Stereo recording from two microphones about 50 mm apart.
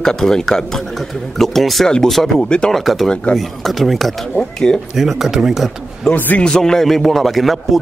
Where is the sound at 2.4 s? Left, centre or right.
Centre.